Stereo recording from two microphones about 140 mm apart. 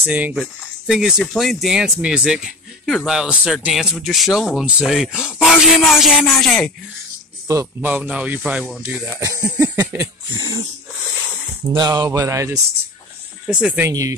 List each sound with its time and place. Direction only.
0.0 s speech: 10° right (ahead or behind)
7.4 s mantra: 20° right (ahead or behind)
7.9 s speech: 10° right (ahead or behind)
9.2 s mantra: 20° right (ahead or behind)
10.3 s wheeze: 30° right (ahead or behind)
11.7 s mantra: 30° right (ahead or behind)
13.5 s speech: 5° right (ahead or behind)
13.8 s mantra: 25° right (ahead or behind)